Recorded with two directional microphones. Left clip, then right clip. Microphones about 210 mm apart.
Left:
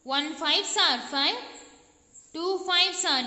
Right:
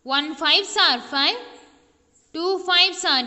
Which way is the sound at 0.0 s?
25° right (ahead or behind).